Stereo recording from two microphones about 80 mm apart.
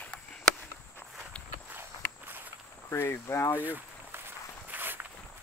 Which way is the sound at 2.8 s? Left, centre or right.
Left.